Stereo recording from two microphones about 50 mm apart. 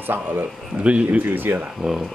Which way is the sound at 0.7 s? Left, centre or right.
Right.